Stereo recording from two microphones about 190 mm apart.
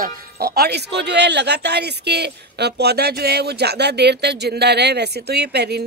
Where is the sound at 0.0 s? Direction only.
55° right (ahead or behind).